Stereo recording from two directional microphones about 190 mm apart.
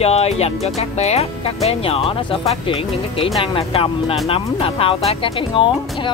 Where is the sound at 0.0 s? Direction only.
35° left (ahead or behind).